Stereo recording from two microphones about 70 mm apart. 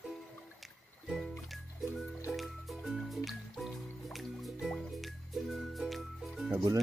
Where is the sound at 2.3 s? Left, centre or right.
Centre.